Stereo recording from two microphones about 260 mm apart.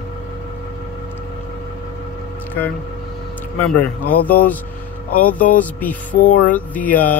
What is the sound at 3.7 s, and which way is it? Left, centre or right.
Speech, centre.